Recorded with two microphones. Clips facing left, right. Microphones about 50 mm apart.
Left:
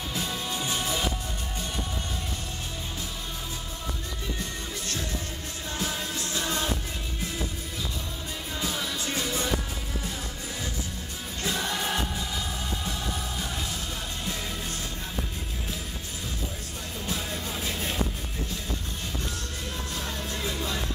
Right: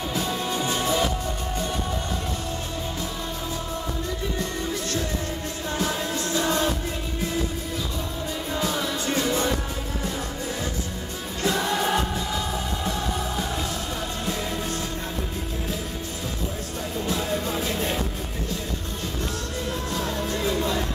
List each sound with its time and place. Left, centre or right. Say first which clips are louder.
0.1 s music: right 5 dB; centre
6.4 s music: right 6 dB; centre
8.5 s music: right 5 dB; centre
11.4 s music: right 6 dB; centre
17.0 s music: right 7 dB; centre
19.9 s music: right 7 dB; centre